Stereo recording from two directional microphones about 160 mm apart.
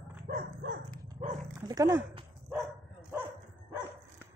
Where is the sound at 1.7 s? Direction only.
20° right (ahead or behind).